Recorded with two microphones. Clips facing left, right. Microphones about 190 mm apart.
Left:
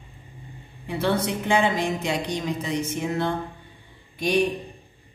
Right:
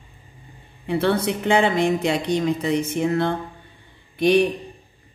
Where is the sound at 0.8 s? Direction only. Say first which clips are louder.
Right 4 dB; 60° right (ahead or behind).